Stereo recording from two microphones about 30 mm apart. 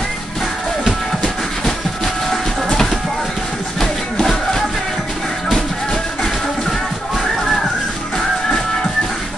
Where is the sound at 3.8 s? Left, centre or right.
Centre.